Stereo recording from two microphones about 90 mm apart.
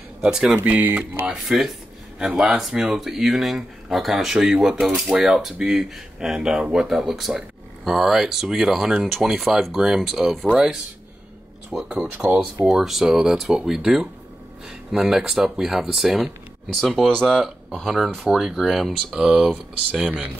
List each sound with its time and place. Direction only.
0.2 s speech: 5° right (ahead or behind)
0.7 s speech: 20° right (ahead or behind)
1.3 s speech: centre (ahead or behind)
19.9 s speech: 15° right (ahead or behind)